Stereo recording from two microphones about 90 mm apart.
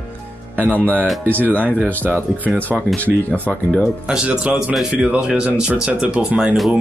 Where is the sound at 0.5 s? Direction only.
20° right (ahead or behind).